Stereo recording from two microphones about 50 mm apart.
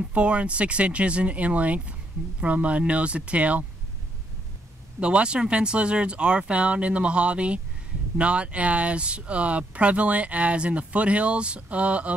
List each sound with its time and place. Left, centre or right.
0.0 s speech: right
5.0 s speech: right